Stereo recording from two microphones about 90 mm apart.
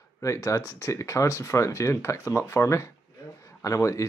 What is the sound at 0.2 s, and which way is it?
Speech, 35° left (ahead or behind).